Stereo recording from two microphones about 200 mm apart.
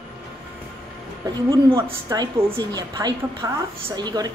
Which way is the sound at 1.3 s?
15° right (ahead or behind).